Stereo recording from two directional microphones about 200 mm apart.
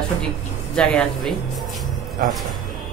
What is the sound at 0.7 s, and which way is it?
Speech, 5° left (ahead or behind).